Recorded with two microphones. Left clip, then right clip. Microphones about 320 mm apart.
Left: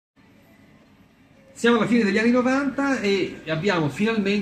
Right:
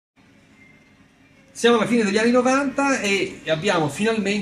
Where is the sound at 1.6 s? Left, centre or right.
Right.